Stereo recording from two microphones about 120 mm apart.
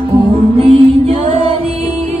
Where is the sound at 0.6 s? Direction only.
55° right (ahead or behind).